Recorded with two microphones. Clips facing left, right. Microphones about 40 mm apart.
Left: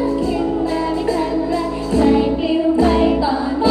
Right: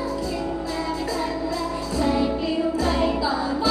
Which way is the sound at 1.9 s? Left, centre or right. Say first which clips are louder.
Left 9 dB; left.